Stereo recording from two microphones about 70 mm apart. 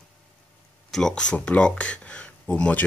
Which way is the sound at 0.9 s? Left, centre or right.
Centre.